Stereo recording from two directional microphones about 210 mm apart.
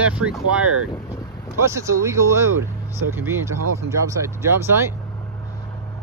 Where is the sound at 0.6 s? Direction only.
90° right.